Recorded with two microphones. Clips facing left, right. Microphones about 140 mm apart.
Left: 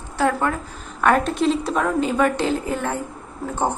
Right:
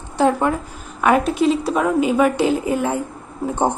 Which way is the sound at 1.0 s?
5° right (ahead or behind).